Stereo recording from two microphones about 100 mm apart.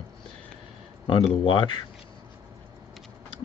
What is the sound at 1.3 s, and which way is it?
Speech, 60° left (ahead or behind).